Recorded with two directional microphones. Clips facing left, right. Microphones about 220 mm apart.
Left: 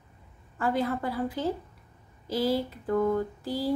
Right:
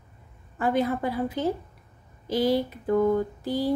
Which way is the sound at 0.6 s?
20° right (ahead or behind).